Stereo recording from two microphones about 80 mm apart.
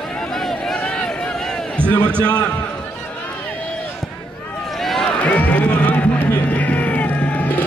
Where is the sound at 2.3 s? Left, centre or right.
Centre.